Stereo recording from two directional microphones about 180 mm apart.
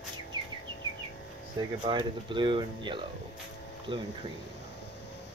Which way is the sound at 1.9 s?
25° right (ahead or behind).